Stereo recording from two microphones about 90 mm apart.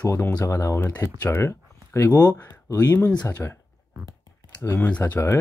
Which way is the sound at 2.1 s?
15° left (ahead or behind).